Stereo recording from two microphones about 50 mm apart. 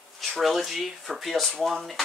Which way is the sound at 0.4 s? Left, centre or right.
Centre.